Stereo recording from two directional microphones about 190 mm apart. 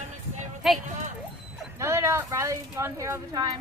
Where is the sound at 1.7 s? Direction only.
15° right (ahead or behind).